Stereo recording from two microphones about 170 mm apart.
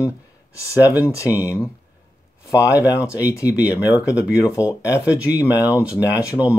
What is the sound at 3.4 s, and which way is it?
Speech, 5° right (ahead or behind).